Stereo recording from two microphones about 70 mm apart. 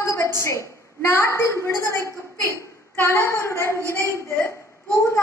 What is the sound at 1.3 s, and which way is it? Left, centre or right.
A woman's voice, left.